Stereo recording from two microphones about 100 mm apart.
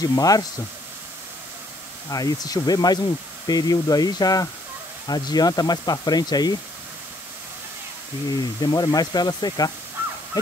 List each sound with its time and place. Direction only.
0.0 s speech: 35° left (ahead or behind)
2.0 s speech: 35° left (ahead or behind)
8.3 s speech: 40° left (ahead or behind)